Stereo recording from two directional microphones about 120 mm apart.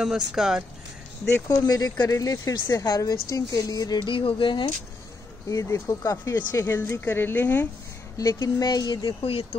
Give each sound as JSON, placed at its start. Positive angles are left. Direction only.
{"t": 0.0, "sound": "speech", "side_deg": -5}
{"t": 1.3, "sound": "speech", "side_deg": 30}
{"t": 5.5, "sound": "speech", "side_deg": 25}
{"t": 8.2, "sound": "speech", "side_deg": 30}
{"t": 9.2, "sound": "speech", "side_deg": 50}